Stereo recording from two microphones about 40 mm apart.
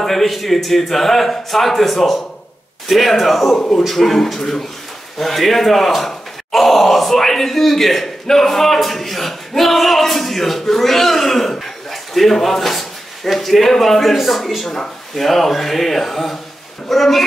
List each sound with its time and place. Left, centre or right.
0.0 s a man's voice: centre
3.5 s speech: left
3.8 s a man's voice: centre